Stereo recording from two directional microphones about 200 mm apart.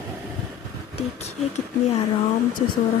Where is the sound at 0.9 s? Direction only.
30° left (ahead or behind).